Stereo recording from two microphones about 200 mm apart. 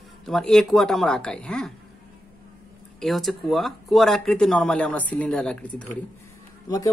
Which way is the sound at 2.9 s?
Centre (ahead or behind).